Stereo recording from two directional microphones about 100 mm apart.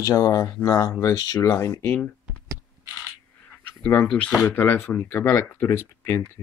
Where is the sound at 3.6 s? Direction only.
20° left (ahead or behind).